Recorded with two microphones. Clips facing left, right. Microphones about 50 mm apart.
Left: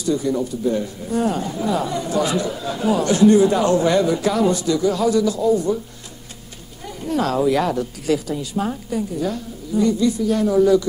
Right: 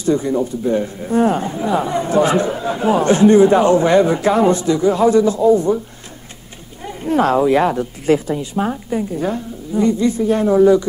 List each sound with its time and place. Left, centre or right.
0.0 s speech: right
6.8 s speech: right